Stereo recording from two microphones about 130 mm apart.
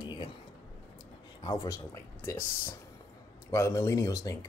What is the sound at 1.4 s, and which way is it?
Speech, 25° left (ahead or behind).